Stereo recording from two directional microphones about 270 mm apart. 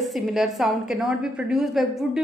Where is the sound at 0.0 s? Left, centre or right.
Centre.